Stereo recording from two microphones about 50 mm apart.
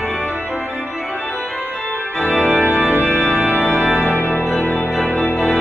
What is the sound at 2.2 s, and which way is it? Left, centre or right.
Organ, centre.